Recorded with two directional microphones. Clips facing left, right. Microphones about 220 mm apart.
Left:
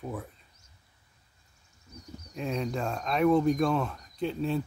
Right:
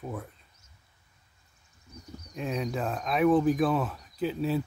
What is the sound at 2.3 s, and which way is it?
Speech, centre (ahead or behind).